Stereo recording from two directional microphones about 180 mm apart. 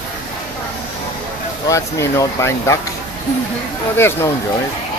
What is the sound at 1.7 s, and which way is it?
Speech, 15° left (ahead or behind).